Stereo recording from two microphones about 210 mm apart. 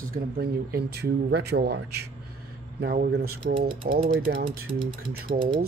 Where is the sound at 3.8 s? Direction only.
35° right (ahead or behind).